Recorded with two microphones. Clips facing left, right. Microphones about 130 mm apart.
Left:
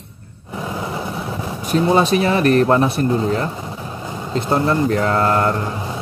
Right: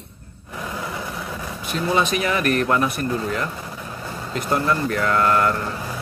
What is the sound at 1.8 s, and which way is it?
Speech, 30° left (ahead or behind).